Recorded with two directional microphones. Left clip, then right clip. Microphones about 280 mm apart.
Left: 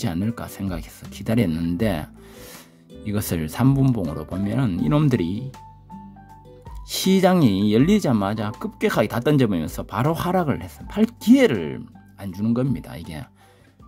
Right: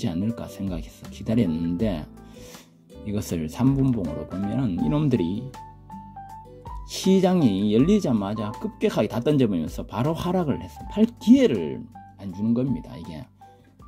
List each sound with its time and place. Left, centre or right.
0.0 s speech: centre
6.9 s speech: centre